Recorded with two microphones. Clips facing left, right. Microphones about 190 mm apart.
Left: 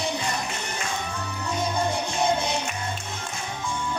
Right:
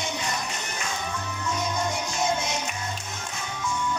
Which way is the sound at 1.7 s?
30° left (ahead or behind).